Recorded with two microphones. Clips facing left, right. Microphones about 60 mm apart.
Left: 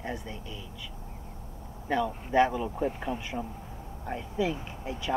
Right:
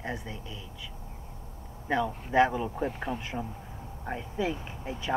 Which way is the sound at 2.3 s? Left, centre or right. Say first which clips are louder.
Even; centre.